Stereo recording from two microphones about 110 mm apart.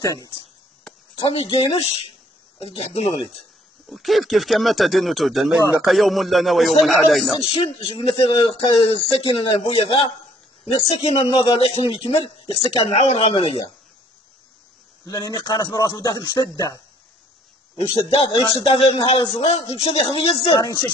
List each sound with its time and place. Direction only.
1.1 s speech: 55° left (ahead or behind)
3.8 s speech: centre (ahead or behind)
7.4 s speech: 60° left (ahead or behind)
11.8 s speech: 50° left (ahead or behind)
15.0 s speech: 40° left (ahead or behind)
17.7 s speech: 60° left (ahead or behind)
20.4 s speech: 35° left (ahead or behind)